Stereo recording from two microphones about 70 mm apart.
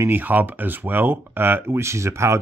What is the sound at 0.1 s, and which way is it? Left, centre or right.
Speech, right.